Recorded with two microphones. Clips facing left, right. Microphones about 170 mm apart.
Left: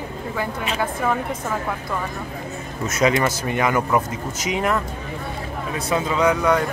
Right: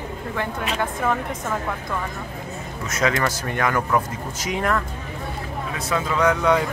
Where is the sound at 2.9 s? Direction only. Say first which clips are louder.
Left 3 dB; 15° left (ahead or behind).